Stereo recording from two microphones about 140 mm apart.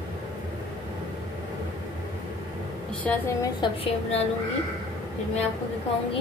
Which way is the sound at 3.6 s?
45° left (ahead or behind).